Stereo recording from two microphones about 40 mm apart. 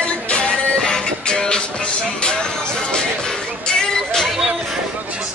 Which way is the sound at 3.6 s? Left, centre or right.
Centre.